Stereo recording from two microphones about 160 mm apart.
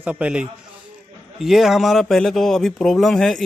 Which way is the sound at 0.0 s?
10° right (ahead or behind).